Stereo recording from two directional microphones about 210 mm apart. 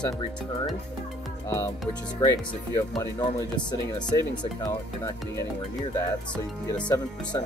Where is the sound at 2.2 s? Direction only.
15° left (ahead or behind).